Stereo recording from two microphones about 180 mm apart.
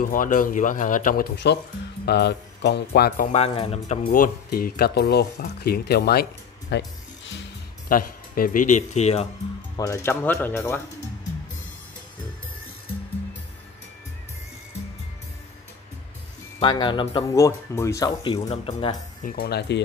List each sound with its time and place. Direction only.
0.0 s speech: 50° left (ahead or behind)
3.3 s speech: 35° left (ahead or behind)
4.1 s speech: 50° left (ahead or behind); by 6.9 s 70° left (ahead or behind)
7.9 s speech: 50° left (ahead or behind)
9.8 s speech: 15° left (ahead or behind)
16.5 s speech: 30° left (ahead or behind)
19.2 s speech: 55° left (ahead or behind)